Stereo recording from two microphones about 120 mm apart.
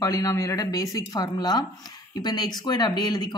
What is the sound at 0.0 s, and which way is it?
Speech, 30° left (ahead or behind).